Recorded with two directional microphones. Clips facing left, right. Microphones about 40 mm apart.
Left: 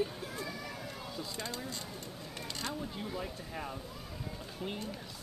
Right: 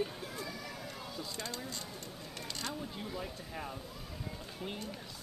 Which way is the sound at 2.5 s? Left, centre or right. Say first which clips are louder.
Left 1 dB; centre.